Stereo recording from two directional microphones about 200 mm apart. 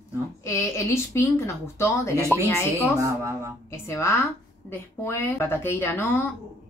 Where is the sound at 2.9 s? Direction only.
15° right (ahead or behind).